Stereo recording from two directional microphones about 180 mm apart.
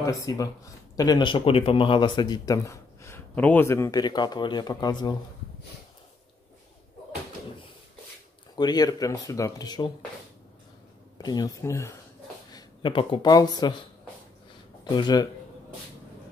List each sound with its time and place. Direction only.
0.0 s speech: 20° left (ahead or behind)
8.5 s speech: 20° left (ahead or behind)
11.1 s speech: 20° left (ahead or behind)
12.5 s speech: 25° left (ahead or behind)
14.9 s speech: 25° left (ahead or behind)